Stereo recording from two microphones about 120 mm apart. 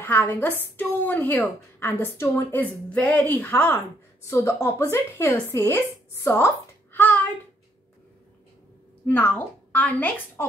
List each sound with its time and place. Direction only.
0.0 s a woman's voice: 20° left (ahead or behind)
6.2 s a sound: 25° left (ahead or behind)
9.0 s a woman's voice: 15° left (ahead or behind)